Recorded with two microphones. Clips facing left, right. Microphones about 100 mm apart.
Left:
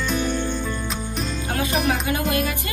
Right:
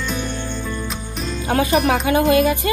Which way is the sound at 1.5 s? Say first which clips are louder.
Right 7 dB; 90° right.